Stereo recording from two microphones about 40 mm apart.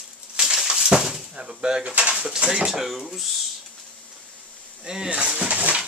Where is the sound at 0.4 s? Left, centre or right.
Centre.